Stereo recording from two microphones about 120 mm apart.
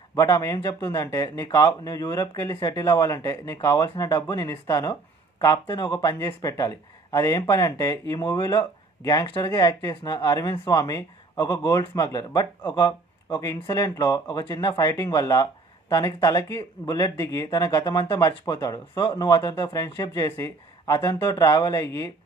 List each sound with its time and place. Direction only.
0.1 s speech: 25° left (ahead or behind)
2.8 s speech: 25° left (ahead or behind)
5.4 s speech: 40° left (ahead or behind)